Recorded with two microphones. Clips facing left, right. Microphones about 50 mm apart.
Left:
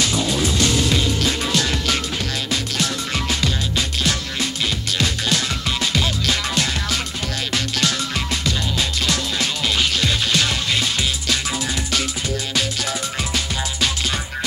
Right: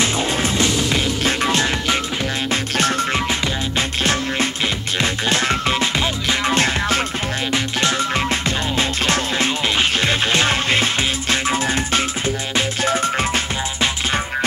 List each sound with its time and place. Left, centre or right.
0.0 s music: right